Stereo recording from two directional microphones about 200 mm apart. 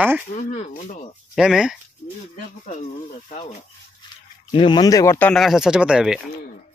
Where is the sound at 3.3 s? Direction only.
35° left (ahead or behind).